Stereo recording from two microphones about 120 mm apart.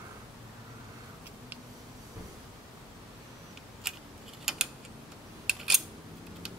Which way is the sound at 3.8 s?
5° right (ahead or behind).